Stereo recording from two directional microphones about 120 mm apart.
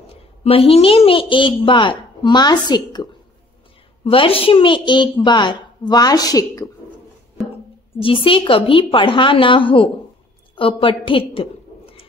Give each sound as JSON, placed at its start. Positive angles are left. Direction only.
{"t": 0.4, "sound": "a woman's voice", "side_deg": 55}
{"t": 4.0, "sound": "a woman's voice", "side_deg": 50}
{"t": 8.0, "sound": "a woman's voice", "side_deg": 45}
{"t": 10.8, "sound": "a sound", "side_deg": 45}